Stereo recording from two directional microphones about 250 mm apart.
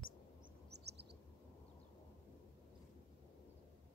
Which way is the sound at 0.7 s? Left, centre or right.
Right.